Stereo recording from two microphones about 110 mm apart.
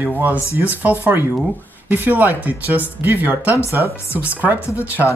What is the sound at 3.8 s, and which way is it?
Speech, 20° left (ahead or behind).